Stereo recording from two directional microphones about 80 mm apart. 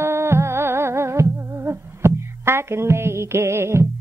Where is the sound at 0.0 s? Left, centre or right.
Right.